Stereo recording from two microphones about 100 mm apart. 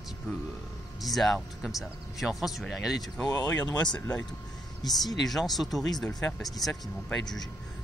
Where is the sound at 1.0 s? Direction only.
Centre (ahead or behind).